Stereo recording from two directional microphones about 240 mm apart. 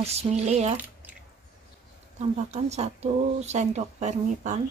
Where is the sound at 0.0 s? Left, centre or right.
Right.